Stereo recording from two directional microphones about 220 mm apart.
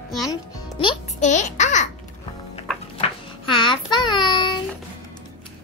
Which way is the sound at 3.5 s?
20° left (ahead or behind).